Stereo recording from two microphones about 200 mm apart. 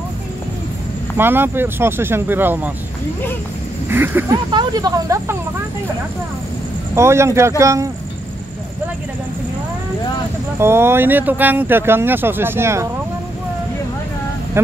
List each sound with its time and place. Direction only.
1.1 s speech: 10° right (ahead or behind)
3.9 s speech: 10° right (ahead or behind)
4.5 s speech: 20° right (ahead or behind)
7.0 s speech: 15° right (ahead or behind)
10.6 s speech: 10° right (ahead or behind)